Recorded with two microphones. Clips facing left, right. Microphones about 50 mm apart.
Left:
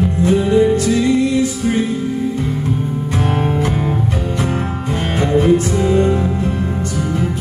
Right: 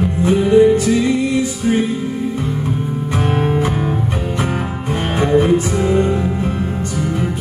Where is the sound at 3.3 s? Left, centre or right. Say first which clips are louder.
Right 2 dB; centre.